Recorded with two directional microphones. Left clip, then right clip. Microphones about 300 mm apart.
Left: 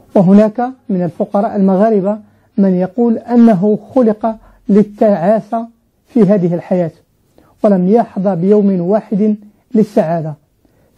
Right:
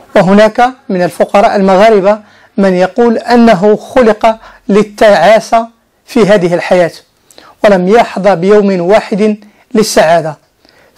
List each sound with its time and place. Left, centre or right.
0.1 s speech: right
0.5 s speech: centre
3.3 s speech: right
6.3 s a sound: centre
7.6 s speech: centre
9.2 s a sound: right
9.9 s speech: centre